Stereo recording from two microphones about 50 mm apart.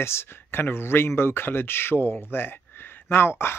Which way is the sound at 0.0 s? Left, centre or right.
Left.